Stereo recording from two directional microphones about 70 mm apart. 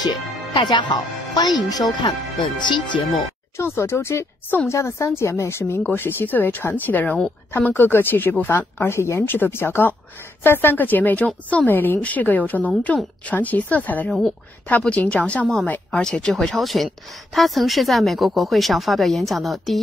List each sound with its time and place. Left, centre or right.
0.7 s speech: left
1.7 s speech: left
3.5 s speech: left
5.9 s a woman's voice: left
14.0 s speech: centre
14.8 s a woman's voice: centre